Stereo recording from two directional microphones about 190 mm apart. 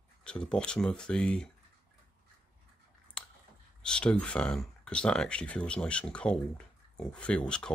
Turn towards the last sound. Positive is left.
turn(degrees=5)  # may be behind; listen again after turning